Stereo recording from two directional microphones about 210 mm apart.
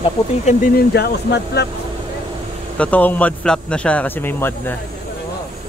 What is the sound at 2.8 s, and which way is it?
Speech, 5° left (ahead or behind).